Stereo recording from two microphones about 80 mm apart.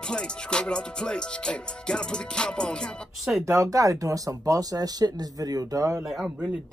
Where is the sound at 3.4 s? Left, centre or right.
Right.